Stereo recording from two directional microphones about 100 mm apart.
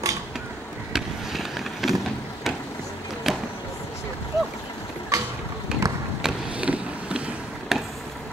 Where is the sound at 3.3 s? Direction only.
5° right (ahead or behind).